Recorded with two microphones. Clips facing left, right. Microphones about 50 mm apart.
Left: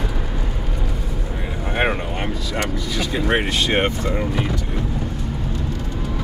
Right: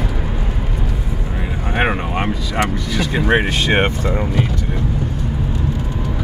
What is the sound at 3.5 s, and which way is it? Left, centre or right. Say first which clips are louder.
Speech: right 3 dB; right.